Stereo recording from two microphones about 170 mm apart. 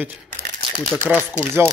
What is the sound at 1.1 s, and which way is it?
Speech, 10° right (ahead or behind).